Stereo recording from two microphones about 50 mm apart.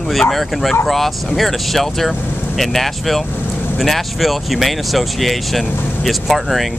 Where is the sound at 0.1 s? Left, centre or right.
Centre.